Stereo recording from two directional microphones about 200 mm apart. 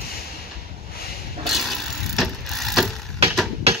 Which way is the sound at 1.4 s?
Centre (ahead or behind).